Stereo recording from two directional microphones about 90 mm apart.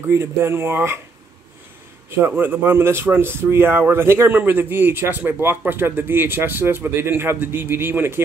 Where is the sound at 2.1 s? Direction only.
25° right (ahead or behind).